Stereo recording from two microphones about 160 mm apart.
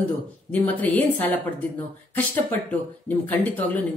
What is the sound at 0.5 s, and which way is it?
Speech, 10° left (ahead or behind).